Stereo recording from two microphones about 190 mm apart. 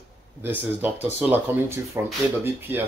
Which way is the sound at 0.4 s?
10° right (ahead or behind).